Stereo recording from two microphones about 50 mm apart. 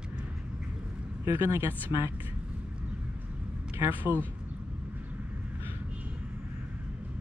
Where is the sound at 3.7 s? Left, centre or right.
Right.